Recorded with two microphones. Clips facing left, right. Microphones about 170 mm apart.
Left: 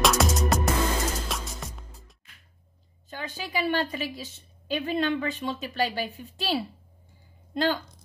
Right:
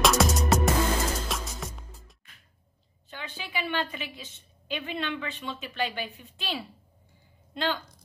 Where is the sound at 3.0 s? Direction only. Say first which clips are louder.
Left 4 dB; 40° left (ahead or behind).